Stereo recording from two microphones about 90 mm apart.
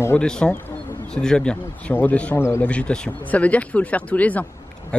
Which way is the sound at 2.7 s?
15° left (ahead or behind).